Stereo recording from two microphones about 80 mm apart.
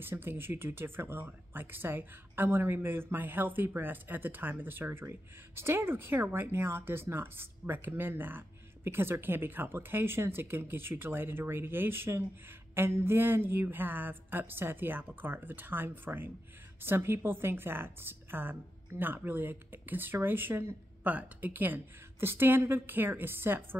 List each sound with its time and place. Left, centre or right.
0.0 s a woman's voice: right